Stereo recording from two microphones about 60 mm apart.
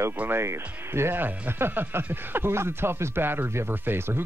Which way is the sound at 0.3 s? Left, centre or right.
Right.